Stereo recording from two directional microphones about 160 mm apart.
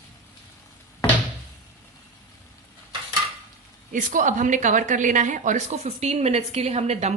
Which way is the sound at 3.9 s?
55° right (ahead or behind).